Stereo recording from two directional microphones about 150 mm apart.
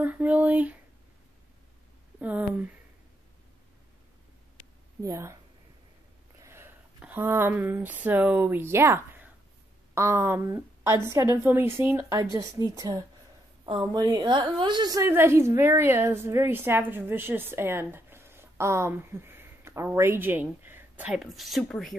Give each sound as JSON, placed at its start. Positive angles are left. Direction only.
{"t": 0.0, "sound": "a woman's voice", "side_deg": -10}
{"t": 2.1, "sound": "a woman's voice", "side_deg": -10}
{"t": 5.0, "sound": "a woman's voice", "side_deg": -20}
{"t": 6.4, "sound": "a woman's voice", "side_deg": -15}